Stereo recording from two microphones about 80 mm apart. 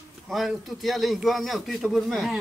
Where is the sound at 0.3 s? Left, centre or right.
Centre.